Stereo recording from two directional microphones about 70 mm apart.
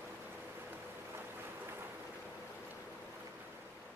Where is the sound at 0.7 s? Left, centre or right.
Right.